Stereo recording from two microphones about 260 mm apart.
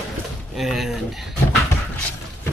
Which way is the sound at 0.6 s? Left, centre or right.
Centre.